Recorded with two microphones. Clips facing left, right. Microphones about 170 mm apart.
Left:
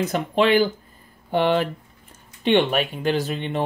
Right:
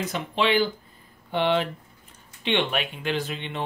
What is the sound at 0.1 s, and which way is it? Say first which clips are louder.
Speech: left 4 dB; 45° left (ahead or behind).